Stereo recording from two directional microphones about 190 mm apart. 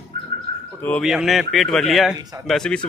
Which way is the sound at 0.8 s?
5° left (ahead or behind).